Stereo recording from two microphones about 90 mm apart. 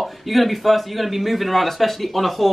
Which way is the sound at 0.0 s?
Centre (ahead or behind).